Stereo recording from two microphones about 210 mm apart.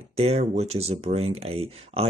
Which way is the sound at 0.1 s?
30° right (ahead or behind).